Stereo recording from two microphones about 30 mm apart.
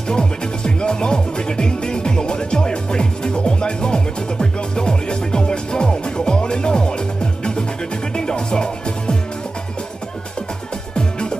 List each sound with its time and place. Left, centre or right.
0.1 s music: left
11.0 s music: left